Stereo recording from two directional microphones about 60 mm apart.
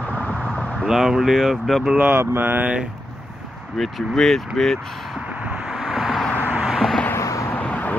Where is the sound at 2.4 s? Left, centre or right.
Right.